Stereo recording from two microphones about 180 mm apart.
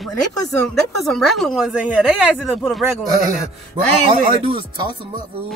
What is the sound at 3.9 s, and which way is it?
Speech, 35° right (ahead or behind).